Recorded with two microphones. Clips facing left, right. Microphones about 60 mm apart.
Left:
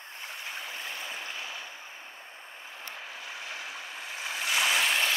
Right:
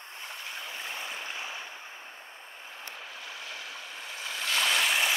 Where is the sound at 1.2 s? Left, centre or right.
Right.